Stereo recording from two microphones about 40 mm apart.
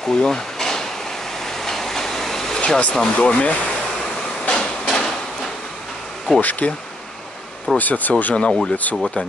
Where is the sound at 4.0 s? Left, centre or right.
Centre.